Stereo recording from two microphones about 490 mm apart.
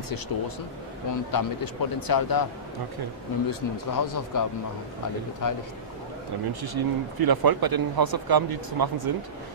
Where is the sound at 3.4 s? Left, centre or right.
Left.